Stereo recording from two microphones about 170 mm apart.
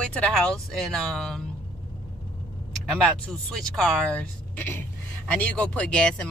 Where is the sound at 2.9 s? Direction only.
5° left (ahead or behind).